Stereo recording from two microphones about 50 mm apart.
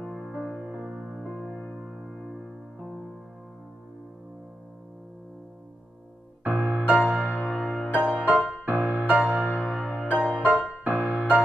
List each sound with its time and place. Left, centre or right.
0.0 s music: centre
6.4 s music: right
7.2 s music: right
7.9 s music: right
8.6 s music: right
10.8 s music: right